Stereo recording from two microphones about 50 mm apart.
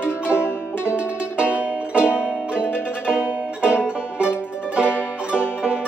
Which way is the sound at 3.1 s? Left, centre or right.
Centre.